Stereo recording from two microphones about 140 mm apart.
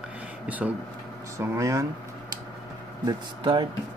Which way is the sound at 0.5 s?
10° right (ahead or behind).